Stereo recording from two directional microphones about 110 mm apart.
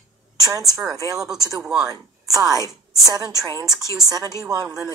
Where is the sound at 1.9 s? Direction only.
35° right (ahead or behind).